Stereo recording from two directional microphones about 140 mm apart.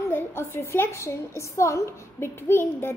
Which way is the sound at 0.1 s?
15° left (ahead or behind).